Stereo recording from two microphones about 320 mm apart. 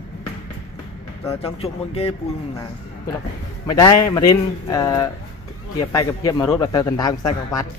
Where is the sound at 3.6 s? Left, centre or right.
Centre.